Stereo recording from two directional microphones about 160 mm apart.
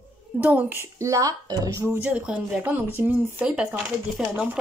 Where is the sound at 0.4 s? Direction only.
10° right (ahead or behind).